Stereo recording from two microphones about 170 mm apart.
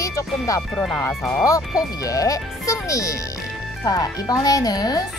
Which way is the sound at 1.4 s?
20° left (ahead or behind).